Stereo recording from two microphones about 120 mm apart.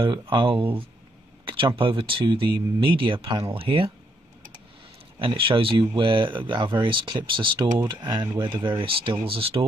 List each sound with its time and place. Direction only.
0.0 s speech: 45° right (ahead or behind)
1.8 s speech: 45° right (ahead or behind)
5.2 s speech: 45° right (ahead or behind)
7.8 s speech: 30° right (ahead or behind)
8.2 s speech: 40° right (ahead or behind)